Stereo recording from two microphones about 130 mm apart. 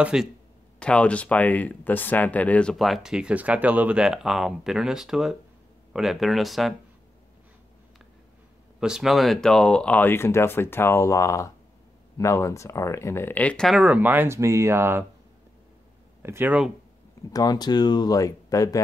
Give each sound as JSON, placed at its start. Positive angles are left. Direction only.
{"t": 0.0, "sound": "speech", "side_deg": -5}
{"t": 0.7, "sound": "speech", "side_deg": 10}
{"t": 8.7, "sound": "speech", "side_deg": -5}
{"t": 13.7, "sound": "speech", "side_deg": -5}
{"t": 16.2, "sound": "speech", "side_deg": -20}
{"t": 17.3, "sound": "speech", "side_deg": 30}